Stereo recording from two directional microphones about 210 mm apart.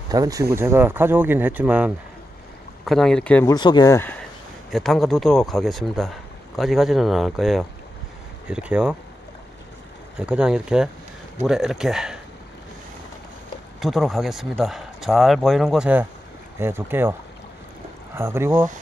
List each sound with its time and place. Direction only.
0.1 s speech: 15° right (ahead or behind); by 3.5 s 5° left (ahead or behind)
3.5 s speech: 20° left (ahead or behind); by 8.9 s 5° right (ahead or behind)
10.1 s speech: 5° right (ahead or behind)
13.7 s speech: centre (ahead or behind)